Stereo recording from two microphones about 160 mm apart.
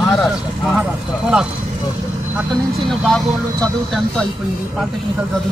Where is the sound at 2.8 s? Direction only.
5° left (ahead or behind).